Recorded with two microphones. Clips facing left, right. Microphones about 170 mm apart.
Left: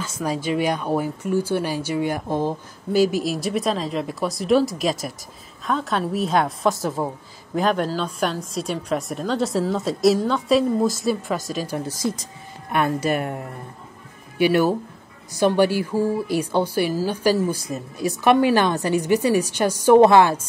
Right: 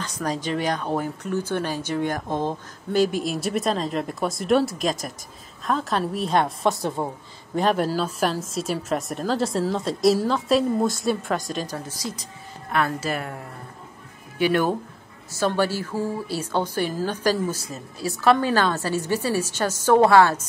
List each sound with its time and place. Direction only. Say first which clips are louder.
0.0 s speech: left 2 dB; 10° left (ahead or behind)
12.7 s a woman's voice: left 4 dB; 20° left (ahead or behind)
14.4 s speech: left 3 dB; 10° left (ahead or behind)